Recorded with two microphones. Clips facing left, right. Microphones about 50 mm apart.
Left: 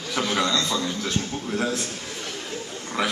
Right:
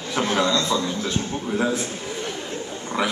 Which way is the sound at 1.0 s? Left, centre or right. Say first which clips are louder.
Right 2 dB; centre.